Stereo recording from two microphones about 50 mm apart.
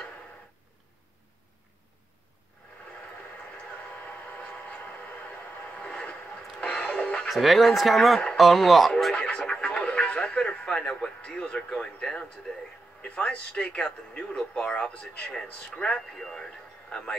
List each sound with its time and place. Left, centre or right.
4.0 s a sound: left
5.8 s vehicle: centre
6.6 s music: left
7.2 s speech: centre
9.1 s a sound: left
13.0 s speech: left
16.2 s speech: centre